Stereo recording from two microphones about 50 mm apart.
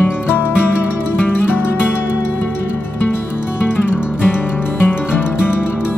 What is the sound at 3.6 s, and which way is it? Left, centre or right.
Music, left.